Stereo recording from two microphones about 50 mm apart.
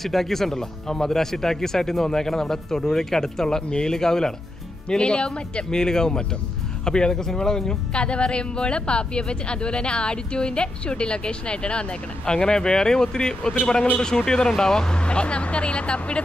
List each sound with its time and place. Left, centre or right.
0.0 s speech: centre; by 16.2 s left